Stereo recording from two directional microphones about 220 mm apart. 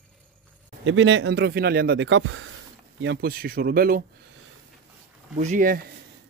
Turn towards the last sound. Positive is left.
turn(degrees=-35)  # may be behind; listen again after turning